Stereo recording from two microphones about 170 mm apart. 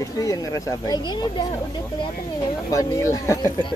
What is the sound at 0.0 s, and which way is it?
Speech, 20° left (ahead or behind).